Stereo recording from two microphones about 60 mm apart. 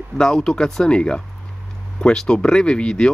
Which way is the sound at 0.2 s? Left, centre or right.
Centre.